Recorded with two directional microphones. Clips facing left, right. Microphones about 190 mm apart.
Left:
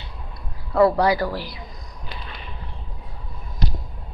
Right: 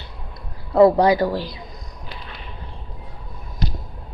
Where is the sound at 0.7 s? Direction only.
20° right (ahead or behind).